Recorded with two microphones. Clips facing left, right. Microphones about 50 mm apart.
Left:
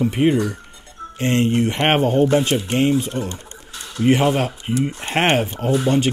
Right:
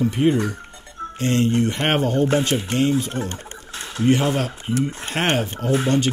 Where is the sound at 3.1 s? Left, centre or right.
Right.